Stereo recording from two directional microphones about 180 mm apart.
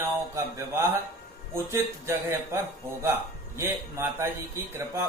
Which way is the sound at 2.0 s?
15° right (ahead or behind).